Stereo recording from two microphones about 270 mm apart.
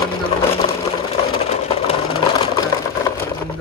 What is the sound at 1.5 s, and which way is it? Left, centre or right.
Vehicle, left.